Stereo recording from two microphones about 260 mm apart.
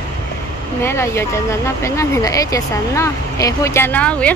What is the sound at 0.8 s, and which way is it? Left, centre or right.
Speech, centre.